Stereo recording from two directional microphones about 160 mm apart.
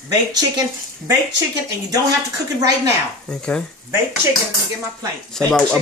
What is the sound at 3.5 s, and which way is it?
Speech, 10° left (ahead or behind).